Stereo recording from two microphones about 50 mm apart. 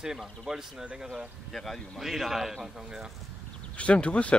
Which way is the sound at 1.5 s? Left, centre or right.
Centre.